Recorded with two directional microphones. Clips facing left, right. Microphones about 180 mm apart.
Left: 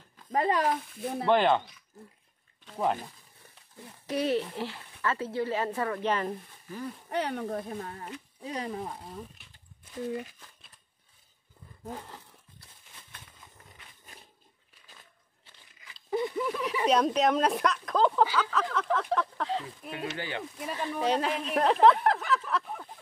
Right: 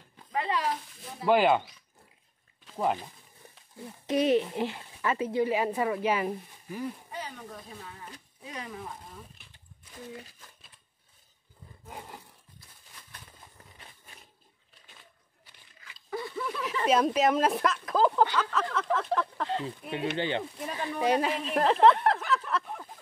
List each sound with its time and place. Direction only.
0.3 s speech: 45° left (ahead or behind)
1.2 s speech: 5° right (ahead or behind)
2.6 s a sound: 5° right (ahead or behind)
4.1 s speech: 20° right (ahead or behind)
7.1 s speech: 70° left (ahead or behind); by 8.1 s 50° left (ahead or behind)
8.4 s speech: 35° left (ahead or behind)
11.9 s speech: 10° right (ahead or behind)
15.9 s a sound: 20° left (ahead or behind)
16.8 s speech: 5° right (ahead or behind)
20.2 s speech: 25° right (ahead or behind)
21.0 s speech: 5° right (ahead or behind)